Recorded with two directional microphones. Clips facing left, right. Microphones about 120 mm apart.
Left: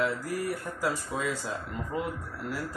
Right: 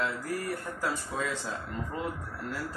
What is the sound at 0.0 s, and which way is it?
Speech, 5° left (ahead or behind).